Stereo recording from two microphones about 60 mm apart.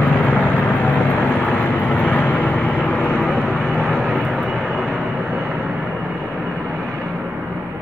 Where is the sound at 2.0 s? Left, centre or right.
Left; by 5.0 s centre.